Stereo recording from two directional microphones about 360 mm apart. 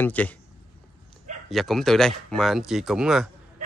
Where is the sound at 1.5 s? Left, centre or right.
Centre.